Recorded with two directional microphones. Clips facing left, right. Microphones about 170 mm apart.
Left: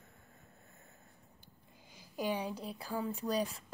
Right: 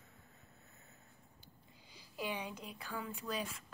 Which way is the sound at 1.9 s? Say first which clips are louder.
Left 6 dB; 45° left (ahead or behind).